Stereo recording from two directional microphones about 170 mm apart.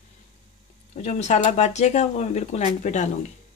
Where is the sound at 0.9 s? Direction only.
40° left (ahead or behind).